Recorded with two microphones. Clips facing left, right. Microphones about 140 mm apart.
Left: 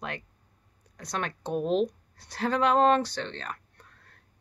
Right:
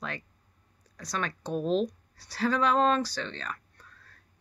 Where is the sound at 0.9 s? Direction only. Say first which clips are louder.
Left 1 dB; 55° left (ahead or behind).